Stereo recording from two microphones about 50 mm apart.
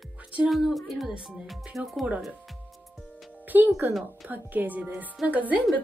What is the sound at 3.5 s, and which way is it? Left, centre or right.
Speech, right.